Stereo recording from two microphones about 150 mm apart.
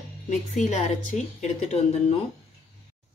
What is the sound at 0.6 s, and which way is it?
A woman's voice, 55° left (ahead or behind).